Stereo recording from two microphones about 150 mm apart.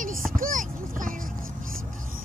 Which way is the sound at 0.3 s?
65° right (ahead or behind).